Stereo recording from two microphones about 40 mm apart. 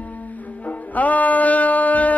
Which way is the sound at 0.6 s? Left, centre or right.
Left.